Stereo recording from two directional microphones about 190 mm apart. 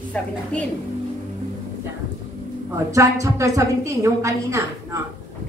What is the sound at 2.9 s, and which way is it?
A woman's voice, 15° right (ahead or behind).